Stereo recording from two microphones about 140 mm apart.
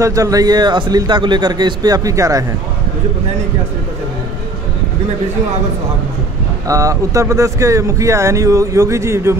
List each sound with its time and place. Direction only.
0.0 s speech: 25° right (ahead or behind)
6.7 s speech: 25° right (ahead or behind)